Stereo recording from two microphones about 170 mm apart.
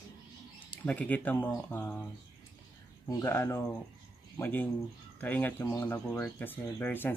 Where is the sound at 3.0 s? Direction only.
15° left (ahead or behind).